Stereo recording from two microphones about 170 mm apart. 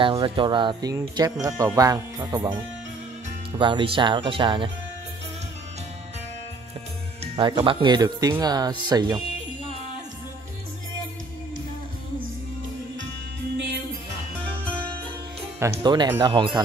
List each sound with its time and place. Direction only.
0.0 s speech: 30° right (ahead or behind)
3.5 s speech: 30° right (ahead or behind)
7.3 s speech: 30° right (ahead or behind)
15.8 s speech: 25° right (ahead or behind)